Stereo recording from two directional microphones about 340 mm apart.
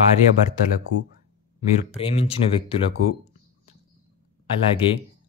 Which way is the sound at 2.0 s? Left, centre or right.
Centre.